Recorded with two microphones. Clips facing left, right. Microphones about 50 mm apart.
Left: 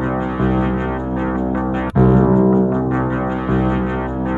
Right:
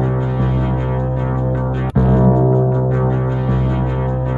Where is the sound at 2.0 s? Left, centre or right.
Centre.